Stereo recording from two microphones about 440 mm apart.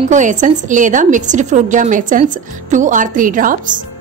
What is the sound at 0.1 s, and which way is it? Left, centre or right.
A woman's voice, centre.